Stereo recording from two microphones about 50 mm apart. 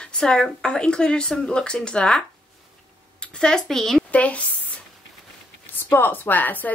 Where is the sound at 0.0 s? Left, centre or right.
Centre.